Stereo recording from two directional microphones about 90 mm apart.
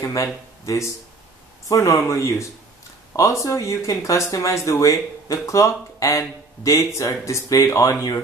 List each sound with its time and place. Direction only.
0.0 s speech: 35° left (ahead or behind)